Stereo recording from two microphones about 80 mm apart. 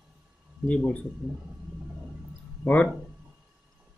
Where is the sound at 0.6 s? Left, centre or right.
Centre.